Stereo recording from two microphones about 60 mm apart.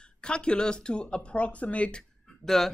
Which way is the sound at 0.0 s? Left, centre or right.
Centre.